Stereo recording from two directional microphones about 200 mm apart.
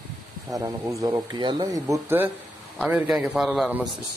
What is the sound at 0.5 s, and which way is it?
Speech, 20° right (ahead or behind).